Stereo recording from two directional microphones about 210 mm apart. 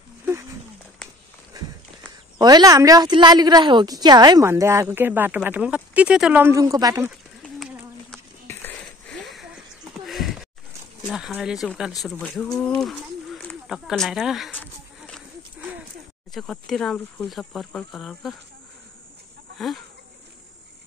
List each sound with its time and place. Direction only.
0.2 s wild animals: 10° right (ahead or behind)
2.3 s a woman's voice: 20° right (ahead or behind)
7.1 s a sound: 5° right (ahead or behind)
11.1 s speech: centre (ahead or behind)
16.3 s speech: centre (ahead or behind)